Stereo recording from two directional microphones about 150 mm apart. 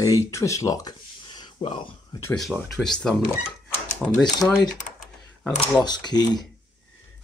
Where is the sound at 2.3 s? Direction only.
5° left (ahead or behind).